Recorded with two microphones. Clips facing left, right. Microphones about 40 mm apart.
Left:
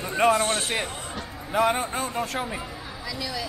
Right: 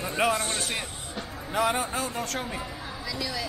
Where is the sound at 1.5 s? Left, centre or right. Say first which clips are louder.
Left 3 dB; centre.